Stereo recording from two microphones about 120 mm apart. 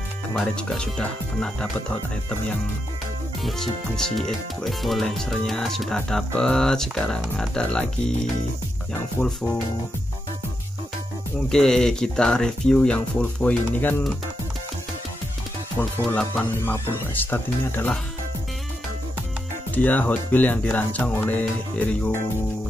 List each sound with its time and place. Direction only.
0.4 s speech: 5° left (ahead or behind)
3.4 s speech: 5° left (ahead or behind)
11.4 s speech: 5° left (ahead or behind)
15.8 s speech: 10° left (ahead or behind)
19.7 s speech: 15° left (ahead or behind)